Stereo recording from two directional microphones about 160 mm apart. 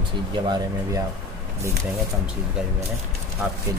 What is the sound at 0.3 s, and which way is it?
Speech, 25° right (ahead or behind).